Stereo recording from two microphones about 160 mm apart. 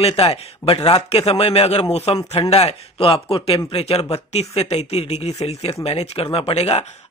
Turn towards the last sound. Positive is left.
turn(degrees=40)  # may be behind; listen again after turning